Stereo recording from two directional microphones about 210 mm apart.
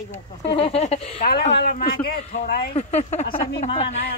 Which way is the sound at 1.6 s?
45° left (ahead or behind).